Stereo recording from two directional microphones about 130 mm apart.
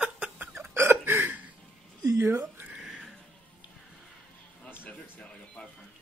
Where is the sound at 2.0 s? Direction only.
25° right (ahead or behind).